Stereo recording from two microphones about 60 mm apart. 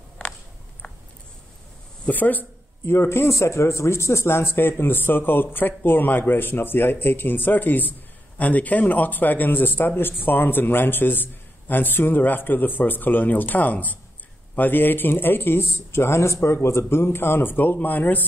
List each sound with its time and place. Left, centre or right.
0.8 s a sound: left
2.0 s speech: left
2.8 s speech: left
15.7 s speech: left